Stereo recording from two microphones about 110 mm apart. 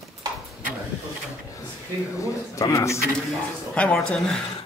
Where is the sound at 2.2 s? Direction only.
30° left (ahead or behind).